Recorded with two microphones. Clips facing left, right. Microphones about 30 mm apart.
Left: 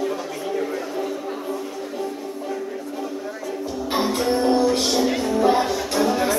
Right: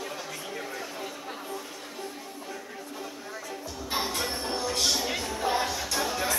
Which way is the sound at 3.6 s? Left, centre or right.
Left.